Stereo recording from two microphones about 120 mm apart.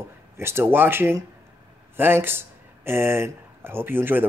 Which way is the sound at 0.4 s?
20° right (ahead or behind).